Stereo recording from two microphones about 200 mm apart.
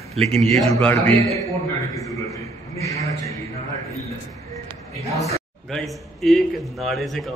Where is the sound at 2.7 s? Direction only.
15° left (ahead or behind).